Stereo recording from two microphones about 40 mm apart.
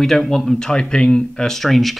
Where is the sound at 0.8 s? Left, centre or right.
Left.